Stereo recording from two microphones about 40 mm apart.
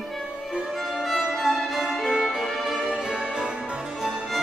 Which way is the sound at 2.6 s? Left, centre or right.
Centre.